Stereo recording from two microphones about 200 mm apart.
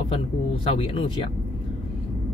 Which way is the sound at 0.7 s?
25° left (ahead or behind).